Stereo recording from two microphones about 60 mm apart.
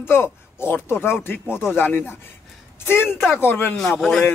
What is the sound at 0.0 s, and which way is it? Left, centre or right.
Speech, left.